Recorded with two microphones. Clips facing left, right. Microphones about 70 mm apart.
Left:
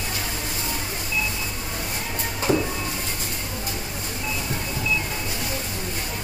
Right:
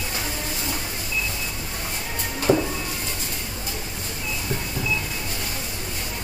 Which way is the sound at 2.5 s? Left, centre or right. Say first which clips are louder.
Right 2 dB; centre.